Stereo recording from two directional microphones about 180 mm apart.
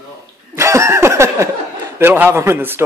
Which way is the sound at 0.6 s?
15° right (ahead or behind).